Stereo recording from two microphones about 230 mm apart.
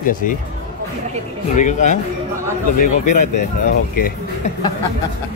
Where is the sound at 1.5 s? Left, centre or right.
Left.